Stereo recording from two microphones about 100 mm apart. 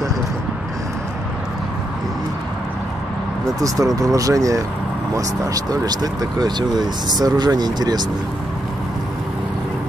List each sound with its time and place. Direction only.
3.5 s speech: 35° right (ahead or behind)